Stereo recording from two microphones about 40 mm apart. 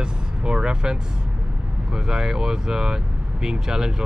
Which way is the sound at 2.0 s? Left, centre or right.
Centre.